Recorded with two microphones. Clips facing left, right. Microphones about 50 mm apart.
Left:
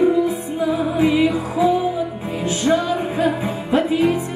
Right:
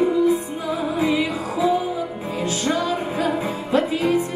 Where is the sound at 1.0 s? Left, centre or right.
Centre.